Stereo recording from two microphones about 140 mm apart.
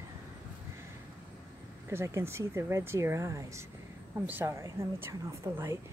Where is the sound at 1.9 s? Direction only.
20° right (ahead or behind).